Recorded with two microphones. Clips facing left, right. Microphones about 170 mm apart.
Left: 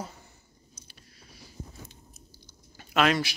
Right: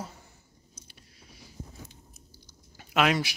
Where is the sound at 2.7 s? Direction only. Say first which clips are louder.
Left 1 dB; 10° right (ahead or behind).